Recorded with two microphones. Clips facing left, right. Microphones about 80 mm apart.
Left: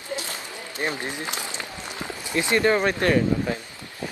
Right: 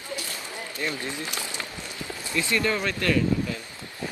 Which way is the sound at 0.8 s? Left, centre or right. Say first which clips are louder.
Left 3 dB; left.